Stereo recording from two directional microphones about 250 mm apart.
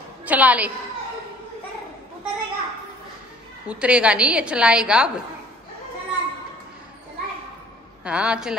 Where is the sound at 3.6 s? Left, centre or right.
Centre.